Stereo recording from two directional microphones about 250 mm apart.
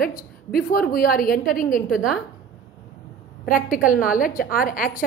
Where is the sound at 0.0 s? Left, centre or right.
Left.